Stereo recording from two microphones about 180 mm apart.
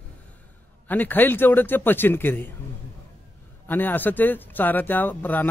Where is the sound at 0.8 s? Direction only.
10° left (ahead or behind).